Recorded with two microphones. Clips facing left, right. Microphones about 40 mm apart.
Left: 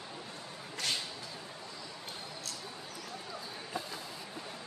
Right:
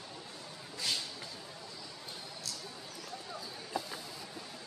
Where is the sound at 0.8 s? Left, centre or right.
Left.